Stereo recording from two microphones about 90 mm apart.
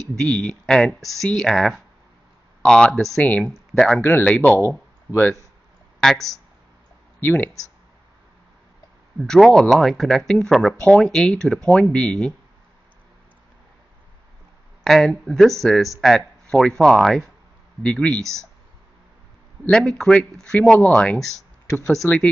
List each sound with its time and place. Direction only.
0.2 s speech: 5° left (ahead or behind)
4.0 s speech: 25° left (ahead or behind)
5.9 s speech: 5° left (ahead or behind)
7.2 s speech: 25° left (ahead or behind)
9.2 s speech: 5° left (ahead or behind)
14.8 s speech: 5° left (ahead or behind)
19.7 s speech: 5° left (ahead or behind)
22.0 s speech: 25° left (ahead or behind)